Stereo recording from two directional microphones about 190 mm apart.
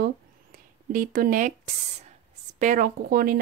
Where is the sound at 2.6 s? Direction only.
45° right (ahead or behind).